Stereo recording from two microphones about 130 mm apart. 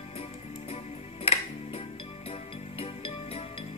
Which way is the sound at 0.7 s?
50° left (ahead or behind).